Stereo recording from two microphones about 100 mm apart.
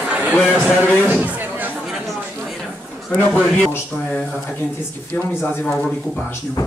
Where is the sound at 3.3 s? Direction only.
15° left (ahead or behind).